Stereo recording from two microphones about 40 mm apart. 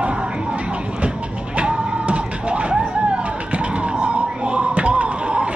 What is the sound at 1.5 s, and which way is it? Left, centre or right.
Music, right.